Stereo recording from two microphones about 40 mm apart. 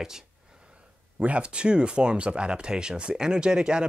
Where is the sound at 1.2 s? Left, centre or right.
Right.